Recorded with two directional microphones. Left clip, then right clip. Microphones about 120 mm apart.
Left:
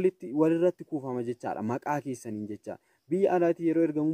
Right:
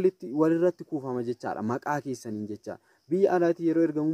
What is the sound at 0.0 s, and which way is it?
Speech, 15° left (ahead or behind).